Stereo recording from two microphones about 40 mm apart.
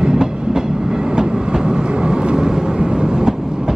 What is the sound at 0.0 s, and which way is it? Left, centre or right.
Train, centre.